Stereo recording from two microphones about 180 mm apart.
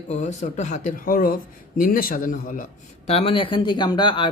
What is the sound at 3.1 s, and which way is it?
Speech, 30° left (ahead or behind).